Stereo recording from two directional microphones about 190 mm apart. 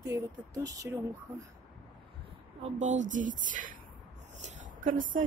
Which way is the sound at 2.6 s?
40° right (ahead or behind).